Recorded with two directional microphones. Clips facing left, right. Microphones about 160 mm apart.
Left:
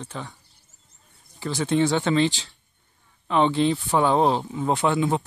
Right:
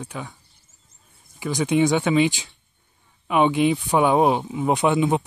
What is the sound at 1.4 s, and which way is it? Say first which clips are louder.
Speech: right 2 dB; 15° right (ahead or behind).